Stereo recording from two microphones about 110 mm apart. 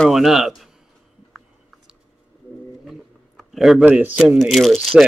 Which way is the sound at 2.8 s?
Centre (ahead or behind).